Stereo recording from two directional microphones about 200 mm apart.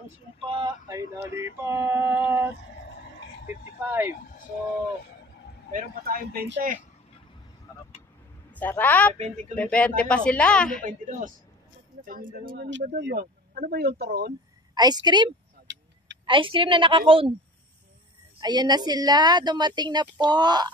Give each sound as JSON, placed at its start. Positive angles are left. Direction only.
{"t": 0.5, "sound": "a sound", "side_deg": -20}
{"t": 1.3, "sound": "male singing", "side_deg": -15}
{"t": 5.7, "sound": "speech", "side_deg": -45}
{"t": 8.5, "sound": "a man's voice", "side_deg": 10}
{"t": 10.8, "sound": "a woman's voice", "side_deg": -40}
{"t": 14.7, "sound": "a woman's voice", "side_deg": -20}
{"t": 15.6, "sound": "vehicle", "side_deg": -60}
{"t": 16.3, "sound": "a woman's voice", "side_deg": -25}
{"t": 18.4, "sound": "a woman's voice", "side_deg": -20}